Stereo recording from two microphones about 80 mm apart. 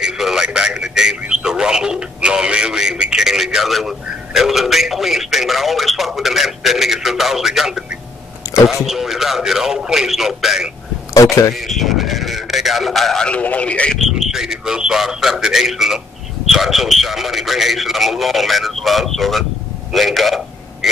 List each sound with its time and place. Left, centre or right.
0.0 s radio: centre
8.6 s speech: centre
11.1 s speech: left
11.5 s speech: centre
13.3 s speech: centre
13.9 s a man's voice: centre
19.9 s a sound: centre